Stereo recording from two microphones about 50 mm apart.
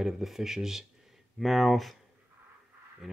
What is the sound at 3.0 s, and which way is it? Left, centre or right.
Speech, centre.